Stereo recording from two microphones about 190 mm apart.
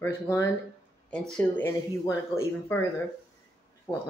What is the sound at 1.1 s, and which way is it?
Speech, 5° left (ahead or behind).